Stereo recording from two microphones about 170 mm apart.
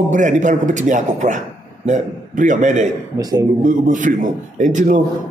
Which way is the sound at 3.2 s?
20° right (ahead or behind).